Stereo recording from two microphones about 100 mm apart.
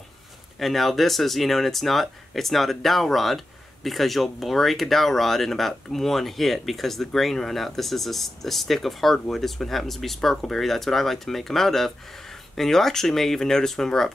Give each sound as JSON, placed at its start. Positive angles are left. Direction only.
{"t": 0.6, "sound": "speech", "side_deg": 0}